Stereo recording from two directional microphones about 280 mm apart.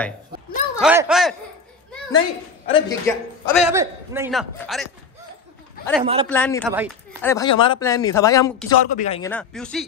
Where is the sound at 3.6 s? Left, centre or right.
Centre.